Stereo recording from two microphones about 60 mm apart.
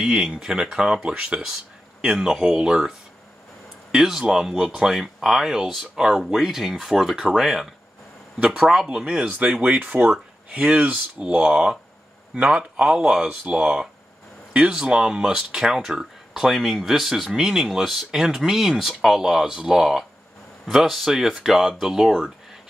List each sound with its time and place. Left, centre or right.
0.0 s speech: centre
3.9 s speech: centre